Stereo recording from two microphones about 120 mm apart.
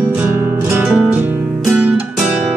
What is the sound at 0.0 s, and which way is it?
Music, 20° right (ahead or behind).